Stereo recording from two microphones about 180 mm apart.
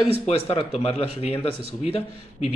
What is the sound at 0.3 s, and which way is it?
A man's voice, 35° left (ahead or behind).